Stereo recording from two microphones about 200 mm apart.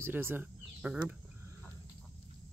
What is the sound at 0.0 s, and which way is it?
Speech, 10° right (ahead or behind).